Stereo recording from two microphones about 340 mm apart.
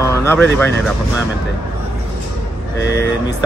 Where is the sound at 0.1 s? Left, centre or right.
Centre.